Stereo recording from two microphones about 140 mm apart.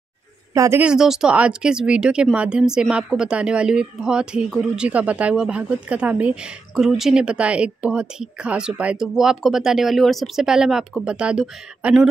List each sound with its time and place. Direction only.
0.6 s speech: 20° right (ahead or behind)
0.8 s speech: 5° right (ahead or behind)